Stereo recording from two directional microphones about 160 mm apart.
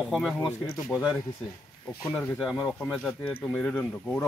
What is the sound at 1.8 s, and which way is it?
Speech, 10° left (ahead or behind).